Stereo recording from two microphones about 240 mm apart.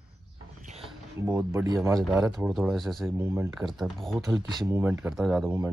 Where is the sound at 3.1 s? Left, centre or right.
Centre.